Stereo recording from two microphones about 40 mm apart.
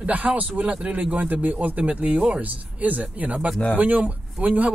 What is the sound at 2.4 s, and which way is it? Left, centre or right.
Speech, right.